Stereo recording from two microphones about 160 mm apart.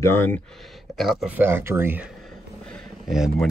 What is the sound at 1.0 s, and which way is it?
Speech, centre (ahead or behind).